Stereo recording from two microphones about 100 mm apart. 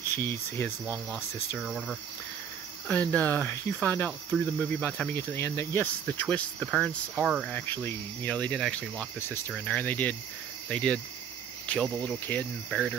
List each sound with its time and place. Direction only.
0.1 s speech: 25° left (ahead or behind)
1.6 s speech: centre (ahead or behind)
2.9 s speech: 15° left (ahead or behind)
5.1 s speech: 25° left (ahead or behind); by 7.2 s 5° left (ahead or behind)
7.6 s speech: 20° left (ahead or behind)
12.6 s speech: centre (ahead or behind)